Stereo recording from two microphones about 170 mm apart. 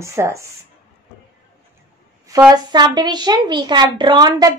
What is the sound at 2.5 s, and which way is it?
Speech, 25° right (ahead or behind).